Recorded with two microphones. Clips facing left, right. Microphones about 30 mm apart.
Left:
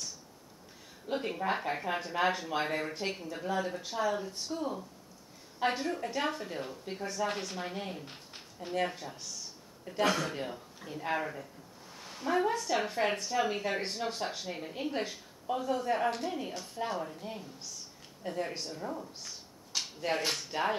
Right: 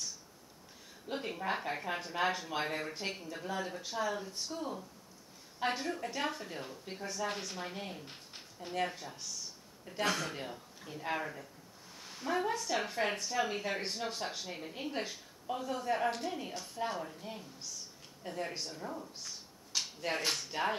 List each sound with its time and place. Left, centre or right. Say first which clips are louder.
1.0 s speech: left 4 dB; centre